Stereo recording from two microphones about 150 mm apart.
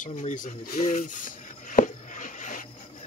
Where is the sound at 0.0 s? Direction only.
55° left (ahead or behind).